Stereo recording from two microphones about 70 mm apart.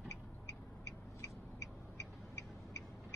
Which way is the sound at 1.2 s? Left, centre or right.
Left.